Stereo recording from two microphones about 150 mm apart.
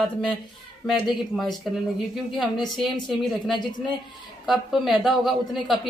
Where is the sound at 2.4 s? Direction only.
30° left (ahead or behind).